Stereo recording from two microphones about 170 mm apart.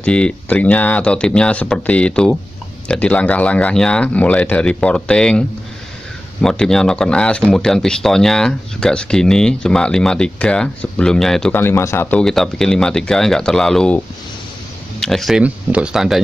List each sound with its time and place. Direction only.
0.0 s speech: 5° left (ahead or behind)
6.4 s speech: 5° left (ahead or behind)